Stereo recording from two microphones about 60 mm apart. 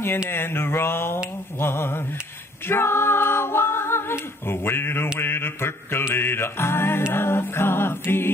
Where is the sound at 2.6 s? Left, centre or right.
Left.